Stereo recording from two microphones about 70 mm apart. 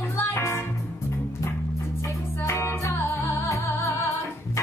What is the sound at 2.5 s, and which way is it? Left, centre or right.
Music, left.